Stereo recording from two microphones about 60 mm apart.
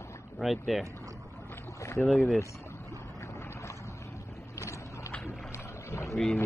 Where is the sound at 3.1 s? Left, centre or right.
Left.